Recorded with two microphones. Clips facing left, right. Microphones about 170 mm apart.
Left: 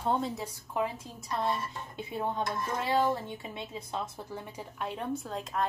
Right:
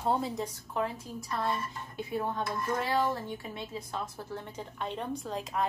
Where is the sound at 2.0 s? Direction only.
20° left (ahead or behind).